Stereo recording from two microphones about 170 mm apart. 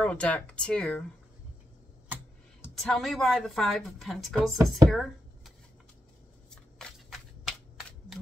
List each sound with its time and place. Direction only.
0.0 s speech: 5° left (ahead or behind)
2.6 s speech: centre (ahead or behind)
4.8 s a sound: centre (ahead or behind)
6.5 s shuffling cards: 5° left (ahead or behind)